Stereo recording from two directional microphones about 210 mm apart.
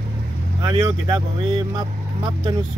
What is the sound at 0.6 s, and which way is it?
Speech, 25° right (ahead or behind).